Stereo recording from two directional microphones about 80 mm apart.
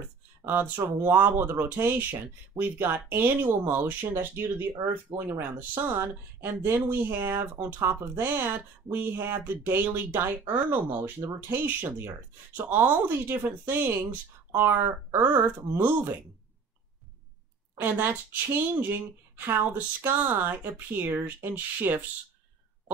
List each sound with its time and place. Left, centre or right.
0.5 s speech: right
17.7 s speech: right